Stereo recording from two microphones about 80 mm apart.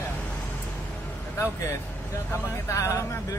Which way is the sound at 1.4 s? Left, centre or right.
Left.